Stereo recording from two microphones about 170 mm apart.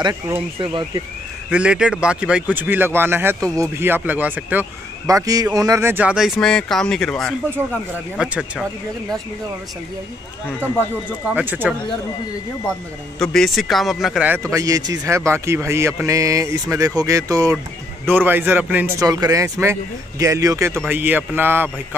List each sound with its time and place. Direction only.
0.0 s speech: 15° right (ahead or behind)
0.6 s speech: 30° right (ahead or behind)
1.5 s speech: 5° right (ahead or behind)
5.0 s speech: 20° right (ahead or behind); by 8.6 s 5° right (ahead or behind)
11.3 s speech: 10° right (ahead or behind)
13.2 s speech: centre (ahead or behind)
14.5 s speech: 20° right (ahead or behind)